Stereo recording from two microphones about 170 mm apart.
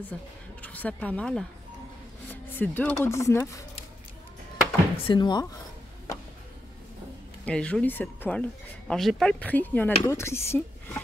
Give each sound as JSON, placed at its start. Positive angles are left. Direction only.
{"t": 0.1, "sound": "speech", "side_deg": 5}
{"t": 4.9, "sound": "speech", "side_deg": 30}
{"t": 7.4, "sound": "speech", "side_deg": 5}